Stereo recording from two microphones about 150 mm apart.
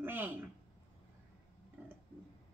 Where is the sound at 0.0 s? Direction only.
15° right (ahead or behind).